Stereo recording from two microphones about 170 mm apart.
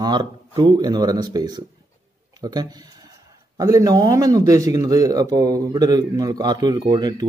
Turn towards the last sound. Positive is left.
turn(degrees=-25)  # may be behind; listen again after turning